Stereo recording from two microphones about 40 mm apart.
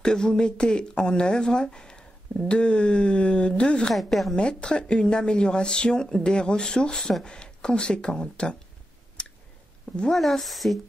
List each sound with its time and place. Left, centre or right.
0.0 s speech: centre
3.9 s speech: centre
4.4 s speech: left
10.1 s speech: centre